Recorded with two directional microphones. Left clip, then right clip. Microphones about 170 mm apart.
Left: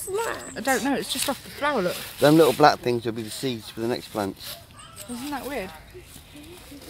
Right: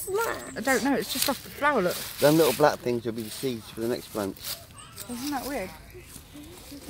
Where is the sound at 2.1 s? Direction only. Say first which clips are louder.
Left 4 dB; 75° left (ahead or behind).